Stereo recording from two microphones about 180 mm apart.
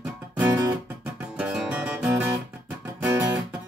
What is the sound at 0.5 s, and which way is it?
Guitar, 20° right (ahead or behind).